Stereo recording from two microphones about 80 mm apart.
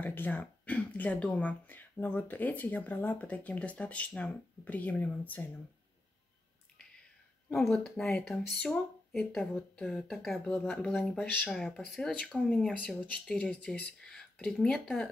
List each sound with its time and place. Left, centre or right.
0.0 s speech: left
7.5 s speech: centre
10.8 s speech: centre